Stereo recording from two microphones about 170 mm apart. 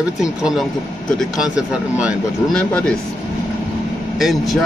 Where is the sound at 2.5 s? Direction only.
5° left (ahead or behind).